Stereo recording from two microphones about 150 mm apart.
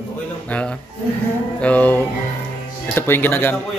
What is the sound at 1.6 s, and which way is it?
A man's voice, 10° left (ahead or behind).